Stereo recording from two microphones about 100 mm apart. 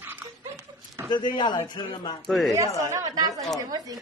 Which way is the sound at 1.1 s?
50° left (ahead or behind).